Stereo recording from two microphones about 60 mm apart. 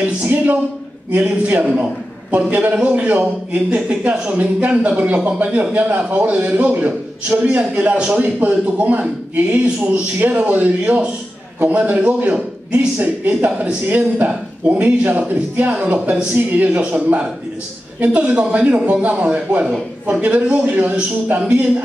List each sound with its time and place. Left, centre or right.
0.0 s a man's voice: right
2.7 s a man's voice: centre
13.8 s a man's voice: right